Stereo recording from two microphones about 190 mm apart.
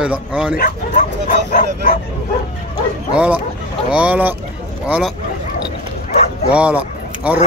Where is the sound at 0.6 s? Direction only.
45° left (ahead or behind).